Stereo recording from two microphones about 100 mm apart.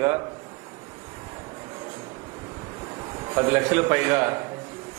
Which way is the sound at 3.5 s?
20° right (ahead or behind).